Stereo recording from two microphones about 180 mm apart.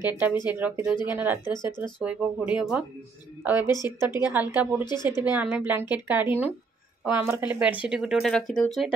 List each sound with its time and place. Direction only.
0.0 s speech: 10° right (ahead or behind)
1.5 s speech: 25° left (ahead or behind)
1.8 s speech: 5° right (ahead or behind)
3.7 s speech: 20° left (ahead or behind)
4.1 s speech: 10° right (ahead or behind)
4.8 s speech: 25° left (ahead or behind)
5.2 s speech: 10° right (ahead or behind)